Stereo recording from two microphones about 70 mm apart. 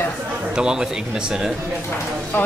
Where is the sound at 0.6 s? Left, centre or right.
Centre.